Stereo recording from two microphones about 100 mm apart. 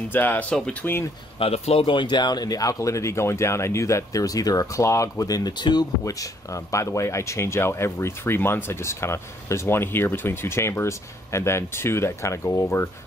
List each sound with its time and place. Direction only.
0.1 s speech: 20° left (ahead or behind)
1.4 s speech: 85° left
1.9 s speech: 50° left (ahead or behind); by 12.8 s 30° left (ahead or behind)